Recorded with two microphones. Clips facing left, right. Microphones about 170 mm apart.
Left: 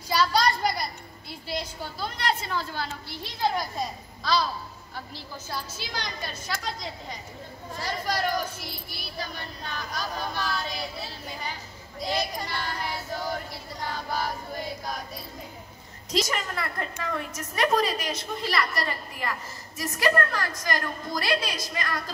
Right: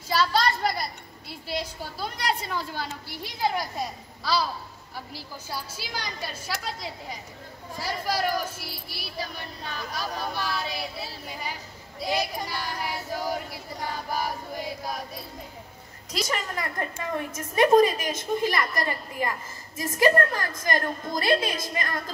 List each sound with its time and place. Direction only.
0.1 s a sound: centre (ahead or behind)
1.6 s a woman's voice: 10° right (ahead or behind)
16.1 s a woman's voice: 15° right (ahead or behind)
18.0 s speech: 50° right (ahead or behind)
18.8 s a woman's voice: 20° right (ahead or behind)
21.2 s speech: 50° right (ahead or behind)